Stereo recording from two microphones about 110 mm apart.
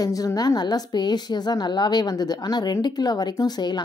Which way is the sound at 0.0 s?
35° left (ahead or behind).